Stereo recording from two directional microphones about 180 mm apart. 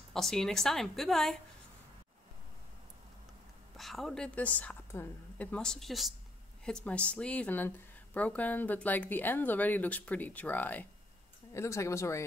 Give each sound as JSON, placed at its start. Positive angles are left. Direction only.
{"t": 0.1, "sound": "a woman's voice", "side_deg": 0}
{"t": 3.7, "sound": "a woman's voice", "side_deg": 0}